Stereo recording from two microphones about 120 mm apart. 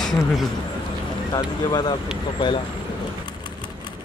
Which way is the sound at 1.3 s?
35° left (ahead or behind).